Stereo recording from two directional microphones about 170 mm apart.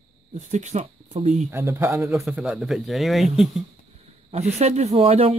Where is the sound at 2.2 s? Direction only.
5° right (ahead or behind).